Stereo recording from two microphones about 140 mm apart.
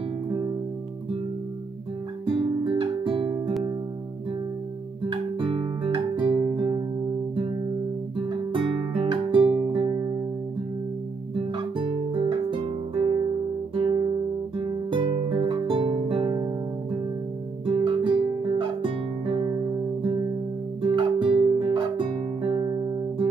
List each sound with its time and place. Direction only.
2.2 s guitar: 40° right (ahead or behind)
5.1 s music: 40° right (ahead or behind)
8.3 s music: 35° right (ahead or behind)
11.5 s guitar: 35° right (ahead or behind)
14.6 s music: 35° right (ahead or behind)
17.6 s guitar: 35° right (ahead or behind)
20.8 s music: 35° right (ahead or behind)